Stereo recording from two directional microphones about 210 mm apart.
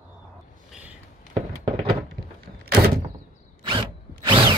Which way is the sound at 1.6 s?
25° right (ahead or behind).